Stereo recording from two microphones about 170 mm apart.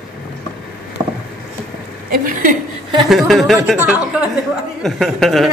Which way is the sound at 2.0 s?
55° right (ahead or behind).